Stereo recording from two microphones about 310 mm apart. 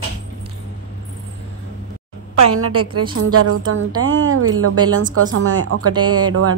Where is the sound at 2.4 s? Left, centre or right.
Right.